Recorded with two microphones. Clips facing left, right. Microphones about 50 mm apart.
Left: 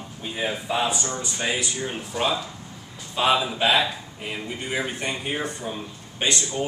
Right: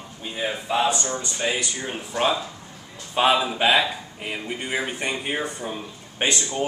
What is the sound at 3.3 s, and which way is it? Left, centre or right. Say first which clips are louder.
A man's voice: right 1 dB; centre.